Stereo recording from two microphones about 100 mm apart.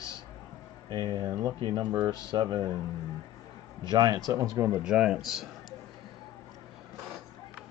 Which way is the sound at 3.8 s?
40° right (ahead or behind).